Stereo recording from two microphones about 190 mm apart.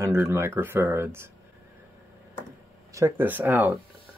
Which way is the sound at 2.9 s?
15° right (ahead or behind).